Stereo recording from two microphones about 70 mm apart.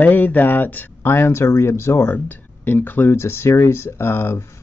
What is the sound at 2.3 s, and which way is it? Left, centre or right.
Speech, left.